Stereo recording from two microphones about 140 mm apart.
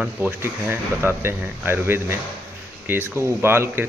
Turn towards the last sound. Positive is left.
turn(degrees=-15)  # may be behind; listen again after turning